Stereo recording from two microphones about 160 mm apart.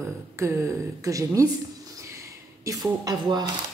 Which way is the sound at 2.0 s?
20° right (ahead or behind).